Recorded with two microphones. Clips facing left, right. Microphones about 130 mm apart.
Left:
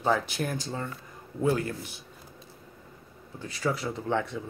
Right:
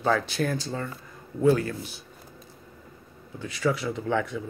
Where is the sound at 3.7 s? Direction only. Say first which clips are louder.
Right 2 dB; 35° left (ahead or behind).